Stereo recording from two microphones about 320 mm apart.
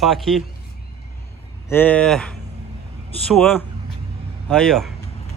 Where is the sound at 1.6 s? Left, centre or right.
Centre.